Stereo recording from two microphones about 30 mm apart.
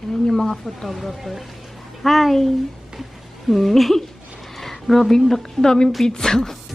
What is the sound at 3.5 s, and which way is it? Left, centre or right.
A woman's voice, centre.